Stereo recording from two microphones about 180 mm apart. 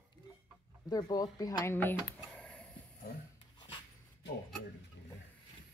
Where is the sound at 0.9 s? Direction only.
20° left (ahead or behind).